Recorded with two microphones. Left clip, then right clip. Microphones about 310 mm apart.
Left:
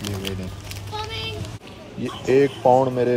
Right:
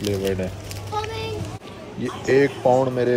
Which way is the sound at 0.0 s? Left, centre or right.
Centre.